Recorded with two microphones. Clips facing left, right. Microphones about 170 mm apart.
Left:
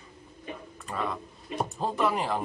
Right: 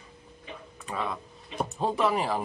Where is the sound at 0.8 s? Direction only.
Centre (ahead or behind).